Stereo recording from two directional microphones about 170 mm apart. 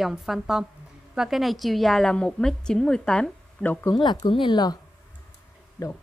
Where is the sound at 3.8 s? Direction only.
25° left (ahead or behind).